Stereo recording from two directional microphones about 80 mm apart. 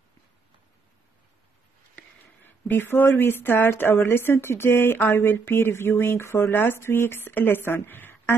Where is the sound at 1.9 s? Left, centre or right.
Left.